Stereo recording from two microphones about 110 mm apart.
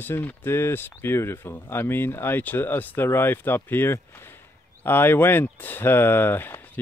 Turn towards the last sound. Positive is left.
turn(degrees=20)  # may be behind; listen again after turning